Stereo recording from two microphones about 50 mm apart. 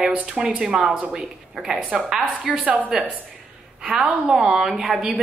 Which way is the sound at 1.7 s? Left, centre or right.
Right.